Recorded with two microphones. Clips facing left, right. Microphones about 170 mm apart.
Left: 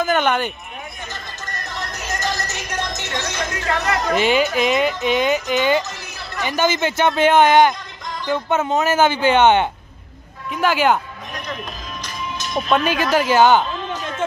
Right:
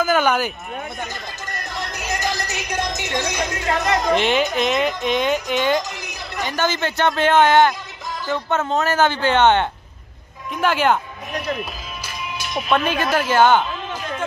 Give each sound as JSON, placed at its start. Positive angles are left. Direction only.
{"t": 0.0, "sound": "speech", "side_deg": -5}
{"t": 1.5, "sound": "music", "side_deg": -10}
{"t": 4.1, "sound": "music", "side_deg": 5}
{"t": 5.9, "sound": "chatter", "side_deg": -15}
{"t": 6.4, "sound": "speech", "side_deg": 10}
{"t": 10.5, "sound": "music", "side_deg": 5}
{"t": 12.0, "sound": "music", "side_deg": -10}
{"t": 12.8, "sound": "music", "side_deg": 10}